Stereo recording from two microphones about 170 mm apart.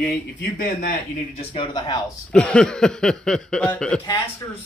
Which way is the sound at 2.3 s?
5° left (ahead or behind).